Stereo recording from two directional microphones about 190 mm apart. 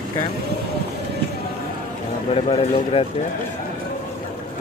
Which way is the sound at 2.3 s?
30° left (ahead or behind).